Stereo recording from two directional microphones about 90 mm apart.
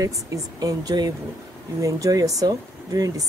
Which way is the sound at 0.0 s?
40° right (ahead or behind).